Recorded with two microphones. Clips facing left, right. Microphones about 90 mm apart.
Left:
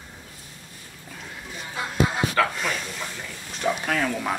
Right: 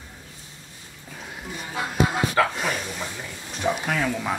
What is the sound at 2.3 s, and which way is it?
Speech, 15° right (ahead or behind).